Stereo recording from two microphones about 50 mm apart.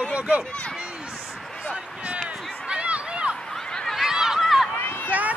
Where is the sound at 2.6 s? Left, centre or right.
Right.